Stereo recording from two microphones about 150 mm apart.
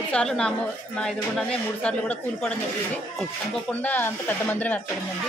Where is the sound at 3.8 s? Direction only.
10° left (ahead or behind).